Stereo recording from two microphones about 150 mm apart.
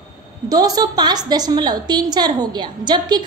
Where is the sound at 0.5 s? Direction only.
25° right (ahead or behind).